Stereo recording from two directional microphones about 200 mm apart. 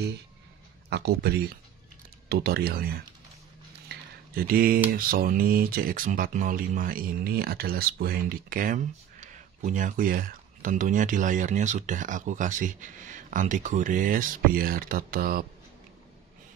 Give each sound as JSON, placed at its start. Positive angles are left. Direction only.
{"t": 0.8, "sound": "speech", "side_deg": -55}
{"t": 3.9, "sound": "a sound", "side_deg": -45}
{"t": 4.9, "sound": "speech", "side_deg": -45}